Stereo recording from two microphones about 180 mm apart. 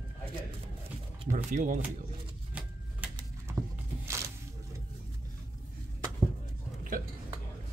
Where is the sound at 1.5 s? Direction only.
45° right (ahead or behind).